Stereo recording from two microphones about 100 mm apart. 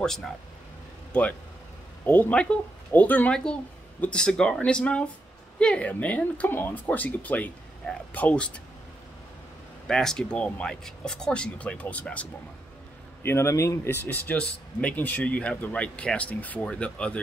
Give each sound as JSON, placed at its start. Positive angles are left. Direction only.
{"t": 0.0, "sound": "speech", "side_deg": 5}
{"t": 2.0, "sound": "speech", "side_deg": 15}
{"t": 9.8, "sound": "speech", "side_deg": 5}
{"t": 13.2, "sound": "speech", "side_deg": 25}